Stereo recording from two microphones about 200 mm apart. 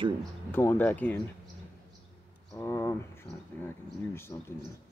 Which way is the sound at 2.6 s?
15° left (ahead or behind).